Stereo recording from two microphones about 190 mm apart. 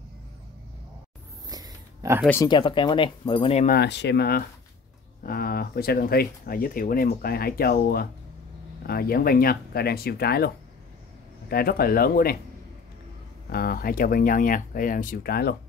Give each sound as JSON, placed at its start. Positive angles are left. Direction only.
{"t": 1.5, "sound": "pig", "side_deg": -15}
{"t": 2.4, "sound": "speech", "side_deg": 25}
{"t": 3.6, "sound": "speech", "side_deg": 55}
{"t": 13.5, "sound": "speech", "side_deg": 50}